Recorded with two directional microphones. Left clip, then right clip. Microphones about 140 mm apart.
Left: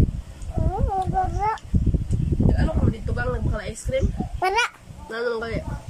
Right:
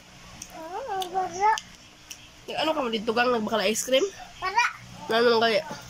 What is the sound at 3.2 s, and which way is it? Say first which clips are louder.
Speech: right 7 dB; 10° right (ahead or behind).